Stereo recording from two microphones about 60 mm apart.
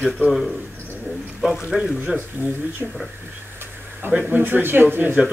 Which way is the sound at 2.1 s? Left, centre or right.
Right.